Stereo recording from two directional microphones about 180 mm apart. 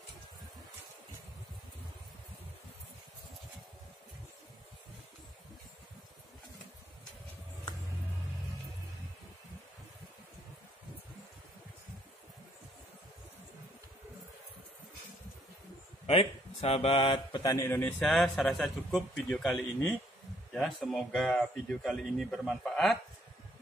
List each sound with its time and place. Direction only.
16.1 s speech: 30° left (ahead or behind); by 22.9 s centre (ahead or behind)